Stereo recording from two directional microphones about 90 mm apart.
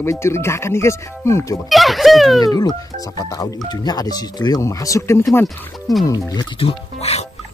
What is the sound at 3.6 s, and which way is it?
Speech, 55° left (ahead or behind).